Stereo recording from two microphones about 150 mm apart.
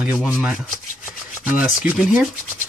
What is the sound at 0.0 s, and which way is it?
Rub, 10° right (ahead or behind).